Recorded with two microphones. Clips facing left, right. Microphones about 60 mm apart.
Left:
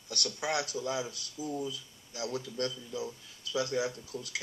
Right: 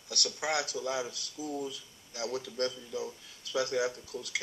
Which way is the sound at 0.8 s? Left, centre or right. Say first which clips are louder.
Even; right.